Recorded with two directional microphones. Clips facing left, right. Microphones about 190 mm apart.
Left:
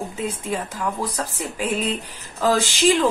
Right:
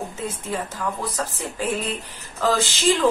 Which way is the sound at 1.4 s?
15° left (ahead or behind).